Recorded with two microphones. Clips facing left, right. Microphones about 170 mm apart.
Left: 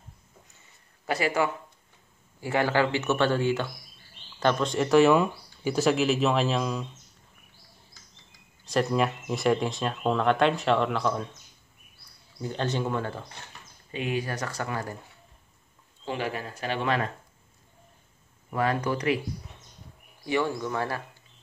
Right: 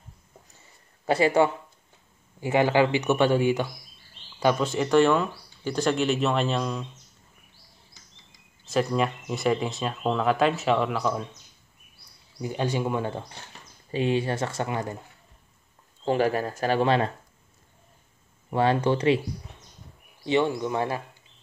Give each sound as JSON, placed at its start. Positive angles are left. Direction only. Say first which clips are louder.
{"t": 1.0, "sound": "speech", "louder": "right 5 dB", "side_deg": -30}
{"t": 8.6, "sound": "speech", "louder": "even", "side_deg": 0}
{"t": 12.4, "sound": "speech", "louder": "right 2 dB", "side_deg": -10}
{"t": 13.9, "sound": "speech", "louder": "right 5 dB", "side_deg": -30}
{"t": 16.1, "sound": "speech", "louder": "right 8 dB", "side_deg": -40}
{"t": 18.5, "sound": "speech", "louder": "right 4 dB", "side_deg": -30}
{"t": 20.2, "sound": "speech", "louder": "right 4 dB", "side_deg": -20}